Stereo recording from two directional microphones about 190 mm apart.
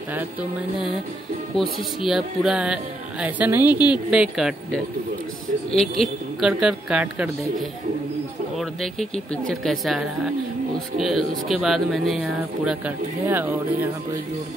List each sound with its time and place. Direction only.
0.1 s speech: 10° right (ahead or behind)
2.0 s speech: centre (ahead or behind)
3.7 s speech: 20° left (ahead or behind)
4.1 s speech: 5° right (ahead or behind)
8.5 s speech: centre (ahead or behind)